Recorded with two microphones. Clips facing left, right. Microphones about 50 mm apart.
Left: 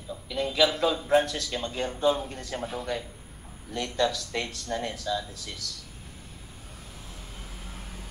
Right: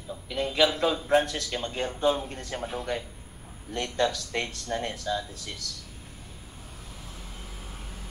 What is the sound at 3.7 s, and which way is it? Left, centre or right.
Speech, right.